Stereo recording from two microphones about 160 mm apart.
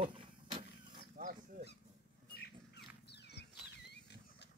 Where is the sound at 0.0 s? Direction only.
35° right (ahead or behind).